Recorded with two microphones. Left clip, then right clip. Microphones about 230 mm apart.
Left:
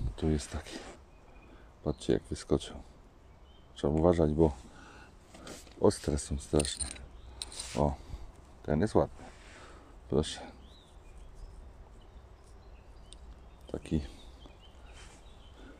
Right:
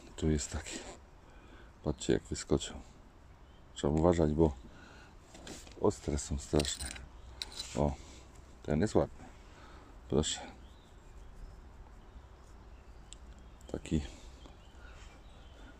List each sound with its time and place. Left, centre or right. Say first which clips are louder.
0.1 s speech: left 1 dB; centre
4.0 s speech: left 2 dB; centre
5.3 s a sound: left 1 dB; left
6.1 s speech: left 2 dB; centre
6.8 s mechanisms: left 2 dB; centre
7.8 s a man's voice: left 3 dB; centre
13.7 s speech: left 1 dB; centre